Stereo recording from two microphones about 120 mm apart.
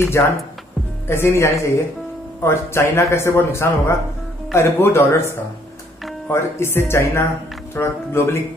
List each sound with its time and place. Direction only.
0.2 s speech: 20° left (ahead or behind)